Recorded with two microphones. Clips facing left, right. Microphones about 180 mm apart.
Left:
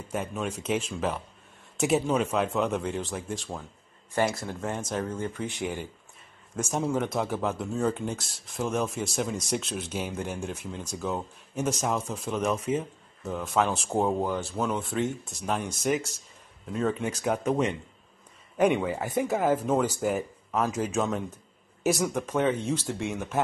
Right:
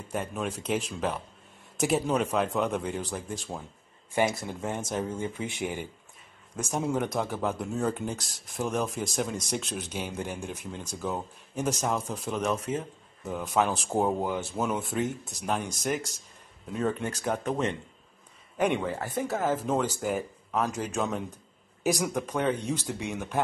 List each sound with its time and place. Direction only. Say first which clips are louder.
0.1 s speech: even; centre (ahead or behind)
6.7 s speech: left 1 dB; centre (ahead or behind)
14.2 s speech: left 1 dB; 15° right (ahead or behind)
14.5 s speech: left 1 dB; 5° right (ahead or behind)
18.9 s speech: left 3 dB; 15° left (ahead or behind); by 23.4 s centre (ahead or behind)